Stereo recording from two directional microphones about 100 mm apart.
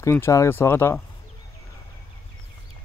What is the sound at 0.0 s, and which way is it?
Speech, 25° left (ahead or behind).